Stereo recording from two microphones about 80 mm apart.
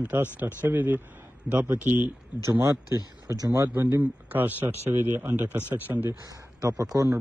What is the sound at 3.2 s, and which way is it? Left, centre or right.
Speech, right.